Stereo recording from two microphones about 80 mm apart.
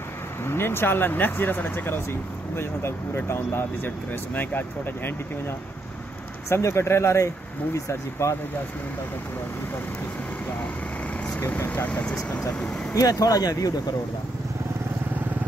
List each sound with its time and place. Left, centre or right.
0.5 s speech: left
6.5 s speech: left
11.3 s speech: left
12.0 s speech: centre
12.9 s speech: left